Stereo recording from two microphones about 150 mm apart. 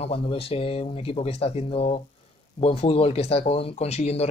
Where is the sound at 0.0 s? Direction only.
40° left (ahead or behind).